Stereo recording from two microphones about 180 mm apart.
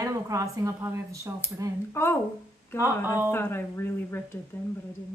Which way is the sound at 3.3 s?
10° left (ahead or behind).